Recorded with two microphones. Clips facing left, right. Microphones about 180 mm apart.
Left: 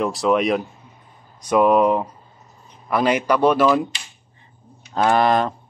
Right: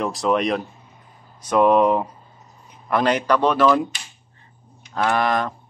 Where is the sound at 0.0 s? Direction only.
Centre (ahead or behind).